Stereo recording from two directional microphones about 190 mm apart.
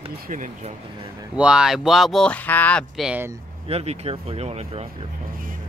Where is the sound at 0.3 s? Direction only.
40° right (ahead or behind).